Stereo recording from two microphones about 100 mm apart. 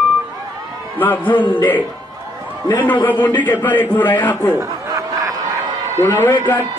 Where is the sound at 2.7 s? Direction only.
15° left (ahead or behind).